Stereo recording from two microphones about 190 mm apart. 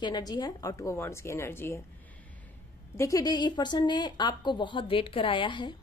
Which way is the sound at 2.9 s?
15° left (ahead or behind).